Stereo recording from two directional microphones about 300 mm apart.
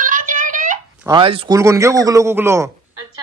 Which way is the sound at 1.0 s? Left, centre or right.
Centre.